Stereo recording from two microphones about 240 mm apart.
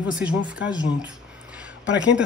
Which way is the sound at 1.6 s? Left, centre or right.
Centre.